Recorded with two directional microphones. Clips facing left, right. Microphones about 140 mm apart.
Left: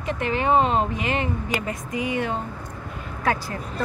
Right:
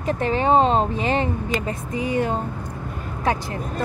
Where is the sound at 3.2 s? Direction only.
20° right (ahead or behind).